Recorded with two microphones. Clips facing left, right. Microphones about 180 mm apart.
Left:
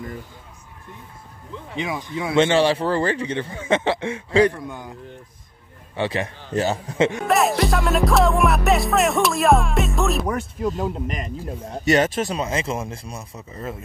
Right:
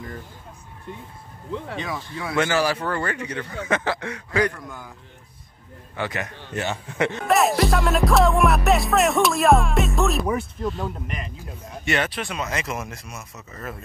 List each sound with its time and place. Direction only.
1.8 s speech: 15° left (ahead or behind)
5.9 s speech: 25° left (ahead or behind)
7.0 s speech: 15° left (ahead or behind)
7.2 s music: centre (ahead or behind)
11.1 s speech: 40° left (ahead or behind); by 13.8 s 20° left (ahead or behind)